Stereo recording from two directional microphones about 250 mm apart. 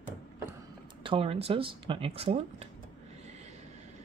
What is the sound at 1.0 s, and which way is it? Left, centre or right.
Speech, right.